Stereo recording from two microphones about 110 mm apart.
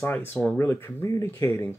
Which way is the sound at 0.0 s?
20° left (ahead or behind).